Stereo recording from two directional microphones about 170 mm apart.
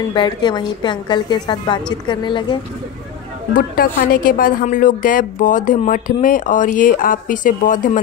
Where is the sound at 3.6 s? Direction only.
60° left (ahead or behind).